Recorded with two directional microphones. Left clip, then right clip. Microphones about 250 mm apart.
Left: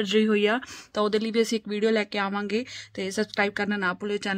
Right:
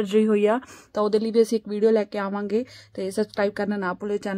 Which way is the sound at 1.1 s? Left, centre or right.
Centre.